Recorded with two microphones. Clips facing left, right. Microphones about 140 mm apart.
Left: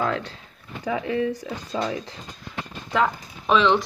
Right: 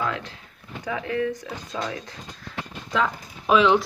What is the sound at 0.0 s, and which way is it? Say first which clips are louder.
Speech: left 3 dB; 40° left (ahead or behind).